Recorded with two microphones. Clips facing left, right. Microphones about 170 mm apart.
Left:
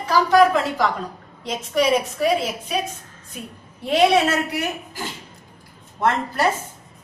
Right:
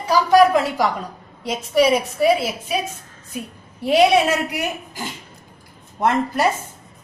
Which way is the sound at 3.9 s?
15° right (ahead or behind).